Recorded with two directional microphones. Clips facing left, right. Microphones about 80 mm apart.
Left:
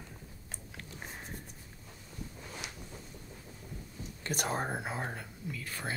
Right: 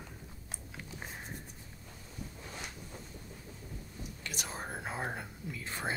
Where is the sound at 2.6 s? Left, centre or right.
Left.